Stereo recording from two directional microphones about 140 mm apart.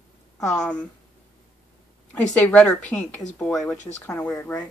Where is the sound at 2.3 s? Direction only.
10° left (ahead or behind).